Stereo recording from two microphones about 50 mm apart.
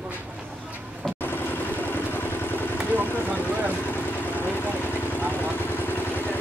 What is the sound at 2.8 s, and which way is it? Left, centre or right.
Vehicle, right.